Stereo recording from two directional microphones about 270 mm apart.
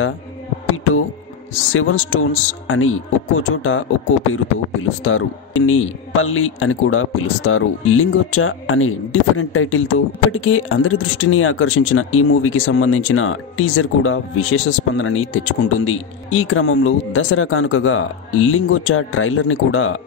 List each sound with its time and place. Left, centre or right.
1.6 s a man's voice: left
4.8 s a man's voice: left